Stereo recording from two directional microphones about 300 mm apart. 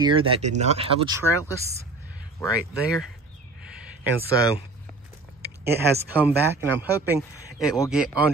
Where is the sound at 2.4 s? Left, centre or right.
Centre.